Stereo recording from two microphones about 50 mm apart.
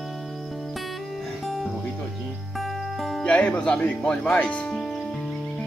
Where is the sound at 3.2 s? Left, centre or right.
Left.